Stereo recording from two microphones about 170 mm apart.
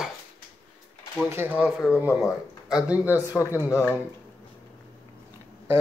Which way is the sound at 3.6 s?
20° left (ahead or behind).